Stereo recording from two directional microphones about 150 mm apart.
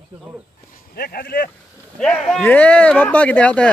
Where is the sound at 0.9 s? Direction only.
90° left.